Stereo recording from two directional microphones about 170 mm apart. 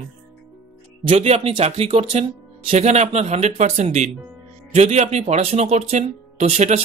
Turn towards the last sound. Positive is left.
turn(degrees=-40)  # may be behind; listen again after turning